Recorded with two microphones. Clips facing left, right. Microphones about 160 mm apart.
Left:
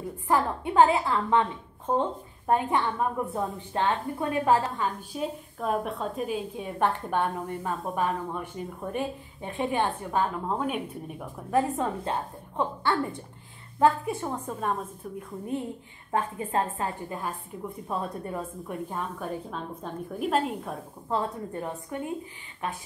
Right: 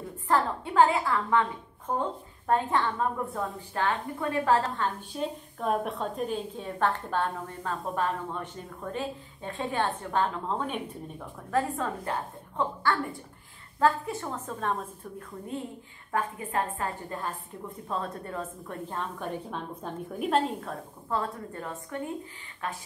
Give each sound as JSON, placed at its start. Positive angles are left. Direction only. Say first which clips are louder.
{"t": 0.3, "sound": "a woman's voice", "louder": "left 1 dB", "side_deg": 20}
{"t": 4.6, "sound": "a woman's voice", "louder": "left 1 dB", "side_deg": 5}
{"t": 16.1, "sound": "a woman's voice", "louder": "left 3 dB", "side_deg": 25}
{"t": 21.1, "sound": "a woman's voice", "louder": "left 2 dB", "side_deg": 20}